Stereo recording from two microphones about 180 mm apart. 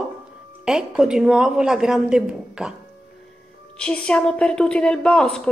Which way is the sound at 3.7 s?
5° left (ahead or behind).